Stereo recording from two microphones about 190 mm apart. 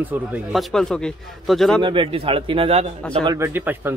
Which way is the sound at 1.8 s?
25° right (ahead or behind).